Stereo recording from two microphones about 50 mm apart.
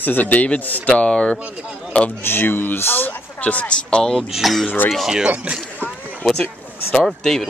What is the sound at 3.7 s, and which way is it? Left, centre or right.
Speech, centre.